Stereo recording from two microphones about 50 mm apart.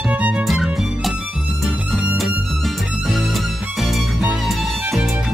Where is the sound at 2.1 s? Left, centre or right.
Centre.